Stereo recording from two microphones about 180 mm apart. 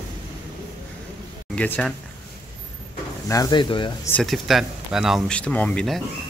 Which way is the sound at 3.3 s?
20° left (ahead or behind).